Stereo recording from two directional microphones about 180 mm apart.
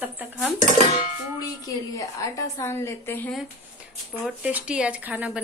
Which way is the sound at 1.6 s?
20° left (ahead or behind).